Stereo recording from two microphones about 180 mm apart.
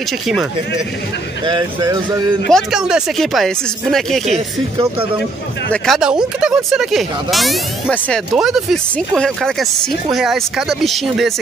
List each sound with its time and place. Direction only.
1.4 s speech: 25° right (ahead or behind)
2.5 s speech: 5° right (ahead or behind)
5.7 s speech: centre (ahead or behind)